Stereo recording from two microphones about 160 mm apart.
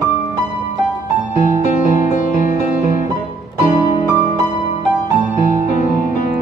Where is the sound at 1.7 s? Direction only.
50° left (ahead or behind).